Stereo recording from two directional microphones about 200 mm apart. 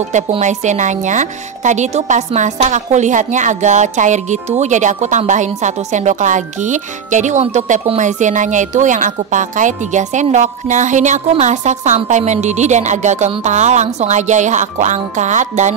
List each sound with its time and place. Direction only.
0.1 s a woman's voice: 35° right (ahead or behind)